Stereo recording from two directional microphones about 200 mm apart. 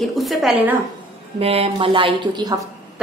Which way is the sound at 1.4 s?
30° right (ahead or behind).